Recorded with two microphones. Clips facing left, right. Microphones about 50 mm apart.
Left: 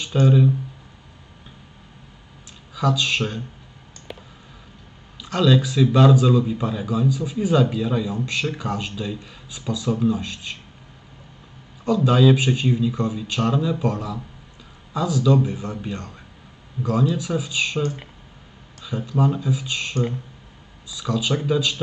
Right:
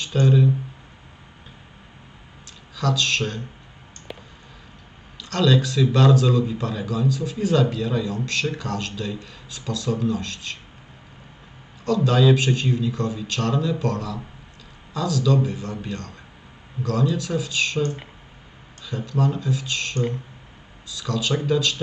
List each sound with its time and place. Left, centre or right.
0.0 s a man's voice: centre
2.7 s a man's voice: centre
4.1 s a sound: centre
5.2 s a man's voice: centre
11.8 s a man's voice: centre